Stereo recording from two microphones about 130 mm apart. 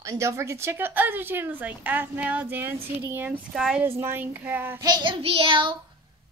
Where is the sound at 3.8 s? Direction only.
20° right (ahead or behind).